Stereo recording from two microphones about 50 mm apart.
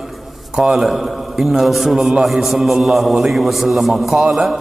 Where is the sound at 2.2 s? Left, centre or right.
Centre.